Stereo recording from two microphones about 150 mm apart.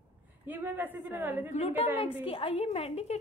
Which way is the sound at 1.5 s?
45° left (ahead or behind).